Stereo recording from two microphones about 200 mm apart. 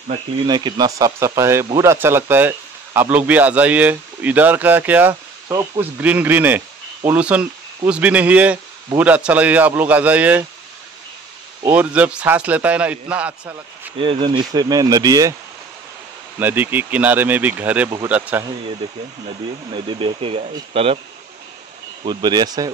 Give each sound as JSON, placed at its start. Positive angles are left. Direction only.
{"t": 0.5, "sound": "speech", "side_deg": -20}
{"t": 11.7, "sound": "speech", "side_deg": -5}
{"t": 14.0, "sound": "speech", "side_deg": -25}
{"t": 16.3, "sound": "speech", "side_deg": -10}
{"t": 19.7, "sound": "speech", "side_deg": -25}
{"t": 22.0, "sound": "speech", "side_deg": -20}